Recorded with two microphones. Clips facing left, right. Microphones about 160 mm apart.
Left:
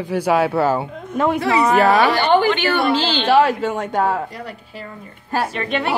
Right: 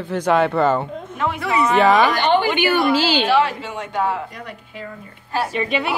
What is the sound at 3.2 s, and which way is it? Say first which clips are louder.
Speech: left 4 dB; 45° left (ahead or behind).